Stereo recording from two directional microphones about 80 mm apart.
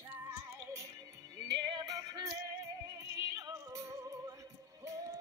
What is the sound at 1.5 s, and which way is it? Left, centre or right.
Music, right.